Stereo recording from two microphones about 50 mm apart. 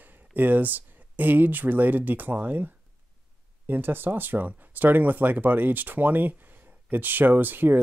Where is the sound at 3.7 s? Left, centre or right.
Right.